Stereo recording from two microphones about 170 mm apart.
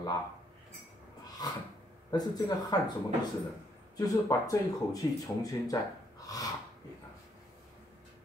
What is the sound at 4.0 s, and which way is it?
Speech, 20° left (ahead or behind).